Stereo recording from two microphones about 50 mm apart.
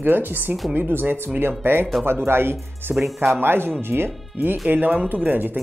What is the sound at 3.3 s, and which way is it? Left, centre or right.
Speech, right.